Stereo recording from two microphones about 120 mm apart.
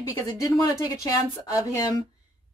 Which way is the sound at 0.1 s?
30° left (ahead or behind).